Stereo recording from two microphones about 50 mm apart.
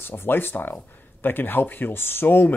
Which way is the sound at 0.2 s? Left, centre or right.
Left.